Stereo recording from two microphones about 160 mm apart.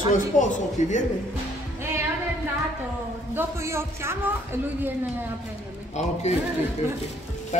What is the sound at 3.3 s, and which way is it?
A man's voice, 15° right (ahead or behind).